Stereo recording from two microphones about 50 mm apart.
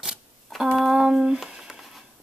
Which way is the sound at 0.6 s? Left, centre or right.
Centre.